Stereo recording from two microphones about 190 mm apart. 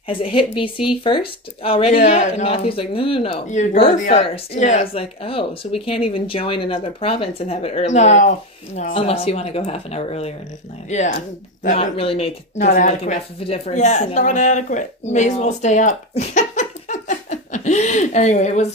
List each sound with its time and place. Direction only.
0.1 s speech: 25° left (ahead or behind)
12.0 s speech: 30° left (ahead or behind)
12.5 s a woman's voice: 45° left (ahead or behind)